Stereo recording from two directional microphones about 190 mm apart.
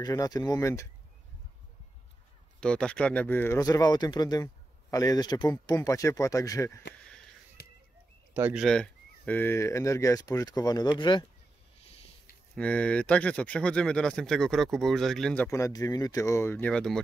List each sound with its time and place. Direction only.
0.0 s speech: 20° left (ahead or behind)
2.6 s speech: 5° left (ahead or behind)
8.4 s speech: 10° right (ahead or behind)
8.6 s speech: 5° left (ahead or behind); by 11.2 s 25° left (ahead or behind)
11.8 s a sound: 30° left (ahead or behind)
12.5 s speech: 5° left (ahead or behind)
15.5 s speech: 15° left (ahead or behind)